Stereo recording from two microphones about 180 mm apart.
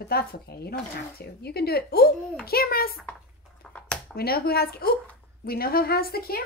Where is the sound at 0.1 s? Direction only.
60° left (ahead or behind).